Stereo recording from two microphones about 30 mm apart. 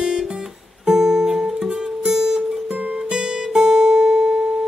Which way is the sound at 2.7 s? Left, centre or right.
Right.